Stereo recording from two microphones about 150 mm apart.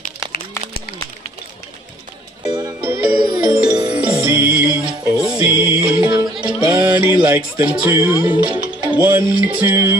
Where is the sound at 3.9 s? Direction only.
15° right (ahead or behind).